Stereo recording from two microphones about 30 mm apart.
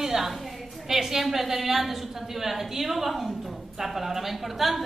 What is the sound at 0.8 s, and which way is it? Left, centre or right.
A woman's voice, centre.